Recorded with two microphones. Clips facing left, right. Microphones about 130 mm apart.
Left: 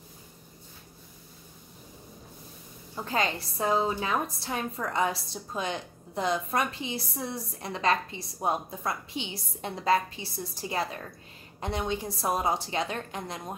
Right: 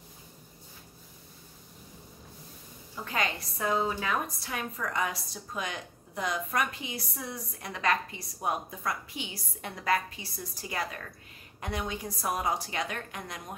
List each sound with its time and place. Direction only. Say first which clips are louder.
3.1 s a woman's voice: left 3 dB; 30° left (ahead or behind)